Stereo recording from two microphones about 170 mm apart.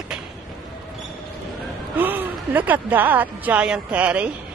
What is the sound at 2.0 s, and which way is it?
Speech, 10° right (ahead or behind).